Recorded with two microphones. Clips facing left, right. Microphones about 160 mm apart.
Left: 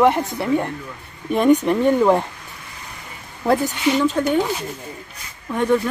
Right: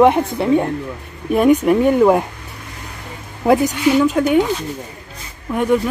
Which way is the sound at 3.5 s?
15° right (ahead or behind).